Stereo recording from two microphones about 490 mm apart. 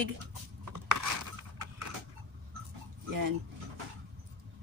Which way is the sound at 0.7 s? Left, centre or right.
Right.